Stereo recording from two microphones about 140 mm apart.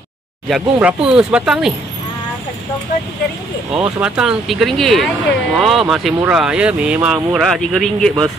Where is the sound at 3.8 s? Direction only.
5° right (ahead or behind).